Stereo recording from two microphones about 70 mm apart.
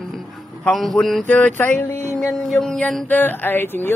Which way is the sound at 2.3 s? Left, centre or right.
Centre.